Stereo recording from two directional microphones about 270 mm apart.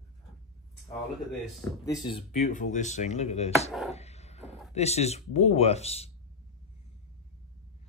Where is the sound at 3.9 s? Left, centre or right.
Left.